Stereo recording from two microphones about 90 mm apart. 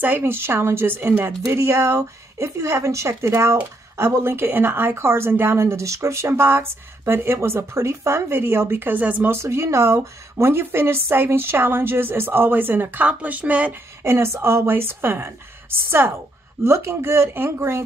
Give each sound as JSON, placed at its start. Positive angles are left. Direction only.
{"t": 0.0, "sound": "speech", "side_deg": -25}
{"t": 14.0, "sound": "speech", "side_deg": -30}